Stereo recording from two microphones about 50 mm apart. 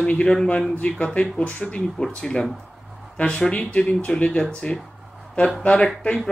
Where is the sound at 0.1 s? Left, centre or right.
Left.